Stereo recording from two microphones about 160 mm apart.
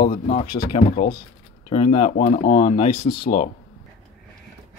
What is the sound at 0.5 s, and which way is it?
Speech, 70° left (ahead or behind).